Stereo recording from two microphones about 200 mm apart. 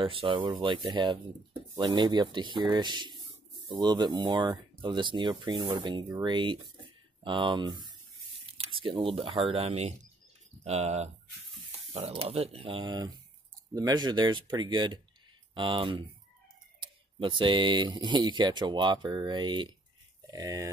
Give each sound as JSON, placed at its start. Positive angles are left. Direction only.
{"t": 0.0, "sound": "speech", "side_deg": -25}